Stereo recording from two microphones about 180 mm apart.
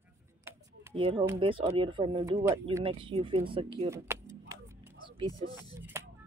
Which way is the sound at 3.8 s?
15° right (ahead or behind).